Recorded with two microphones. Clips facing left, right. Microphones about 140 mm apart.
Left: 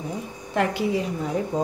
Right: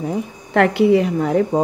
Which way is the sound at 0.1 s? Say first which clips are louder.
Right 8 dB; 65° right (ahead or behind).